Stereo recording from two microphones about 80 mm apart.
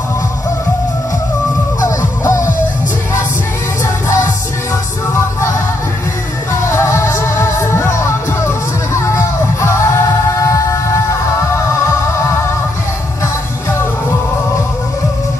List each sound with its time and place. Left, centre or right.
1.8 s music: left
3.8 s music: left